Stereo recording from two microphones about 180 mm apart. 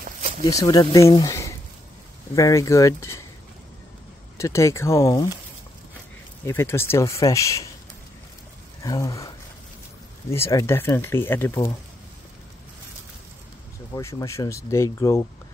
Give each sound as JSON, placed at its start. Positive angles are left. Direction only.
{"t": 0.5, "sound": "speech", "side_deg": 20}
{"t": 4.4, "sound": "speech", "side_deg": 15}
{"t": 6.4, "sound": "speech", "side_deg": 15}
{"t": 8.8, "sound": "speech", "side_deg": 20}
{"t": 10.3, "sound": "speech", "side_deg": 15}
{"t": 13.9, "sound": "speech", "side_deg": 15}